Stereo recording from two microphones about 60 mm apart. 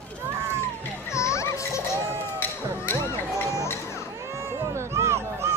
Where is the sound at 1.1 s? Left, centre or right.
Left.